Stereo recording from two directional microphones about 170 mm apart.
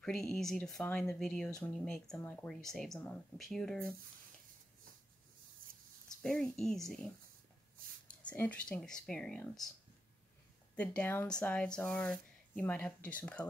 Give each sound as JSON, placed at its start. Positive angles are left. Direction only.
{"t": 0.0, "sound": "speech", "side_deg": 5}
{"t": 5.6, "sound": "a sound", "side_deg": -55}
{"t": 6.2, "sound": "speech", "side_deg": 5}
{"t": 8.3, "sound": "speech", "side_deg": 10}
{"t": 10.8, "sound": "speech", "side_deg": 10}